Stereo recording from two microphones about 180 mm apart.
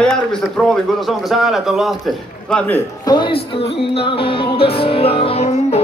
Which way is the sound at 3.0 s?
25° left (ahead or behind).